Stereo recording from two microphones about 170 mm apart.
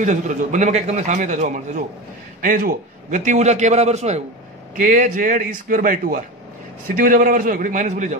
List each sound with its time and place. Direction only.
0.0 s a man's voice: 45° right (ahead or behind)
2.4 s a man's voice: 55° right (ahead or behind)
4.7 s a man's voice: 50° right (ahead or behind)